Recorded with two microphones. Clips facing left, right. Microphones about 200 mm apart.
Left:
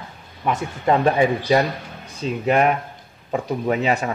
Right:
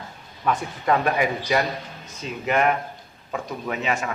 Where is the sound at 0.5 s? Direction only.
25° left (ahead or behind).